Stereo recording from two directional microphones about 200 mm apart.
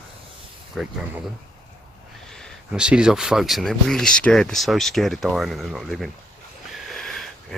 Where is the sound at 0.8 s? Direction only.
5° right (ahead or behind).